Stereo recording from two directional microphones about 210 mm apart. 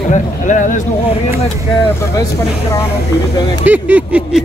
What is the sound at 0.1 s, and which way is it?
Speech, 35° left (ahead or behind).